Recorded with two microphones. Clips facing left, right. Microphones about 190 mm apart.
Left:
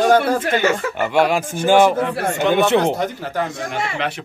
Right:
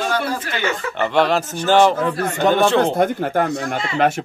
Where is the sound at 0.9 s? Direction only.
10° left (ahead or behind).